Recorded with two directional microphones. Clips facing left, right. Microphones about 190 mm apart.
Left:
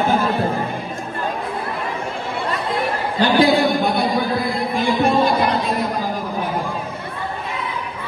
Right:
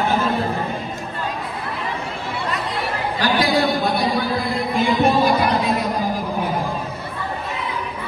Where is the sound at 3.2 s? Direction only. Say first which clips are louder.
Left 6 dB; 25° left (ahead or behind).